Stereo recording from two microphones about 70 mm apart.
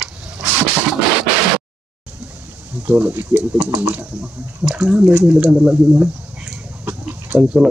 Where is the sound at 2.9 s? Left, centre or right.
Right.